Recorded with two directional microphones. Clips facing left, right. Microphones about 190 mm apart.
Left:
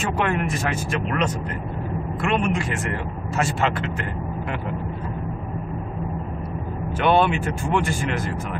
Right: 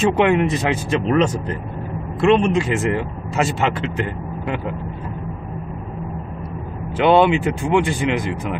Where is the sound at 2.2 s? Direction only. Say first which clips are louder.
Right 8 dB; 30° right (ahead or behind).